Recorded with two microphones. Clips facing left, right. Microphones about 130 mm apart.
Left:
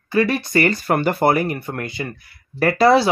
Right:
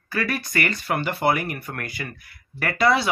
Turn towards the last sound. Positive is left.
turn(degrees=35)  # may be behind; listen again after turning